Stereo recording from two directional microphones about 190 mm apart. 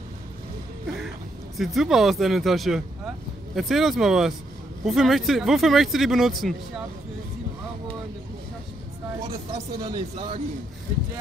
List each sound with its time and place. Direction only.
1.6 s speech: centre (ahead or behind)
9.5 s speech: 30° right (ahead or behind)